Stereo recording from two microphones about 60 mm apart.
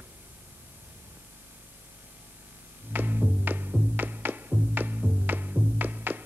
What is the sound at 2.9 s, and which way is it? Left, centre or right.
Music, right.